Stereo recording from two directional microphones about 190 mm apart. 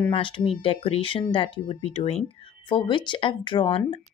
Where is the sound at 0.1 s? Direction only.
30° left (ahead or behind).